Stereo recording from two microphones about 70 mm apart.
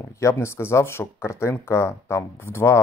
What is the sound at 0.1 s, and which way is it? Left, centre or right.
Speech, left.